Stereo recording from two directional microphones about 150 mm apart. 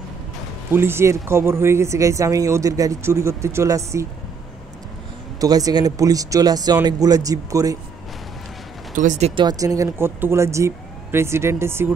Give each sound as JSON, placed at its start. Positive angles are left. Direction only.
{"t": 0.7, "sound": "speech", "side_deg": -15}
{"t": 5.4, "sound": "speech", "side_deg": -25}
{"t": 8.9, "sound": "speech", "side_deg": -60}
{"t": 9.3, "sound": "speech", "side_deg": -30}
{"t": 9.8, "sound": "speech", "side_deg": -15}